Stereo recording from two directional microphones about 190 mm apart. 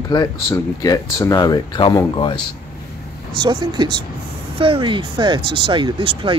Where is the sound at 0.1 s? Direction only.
20° left (ahead or behind).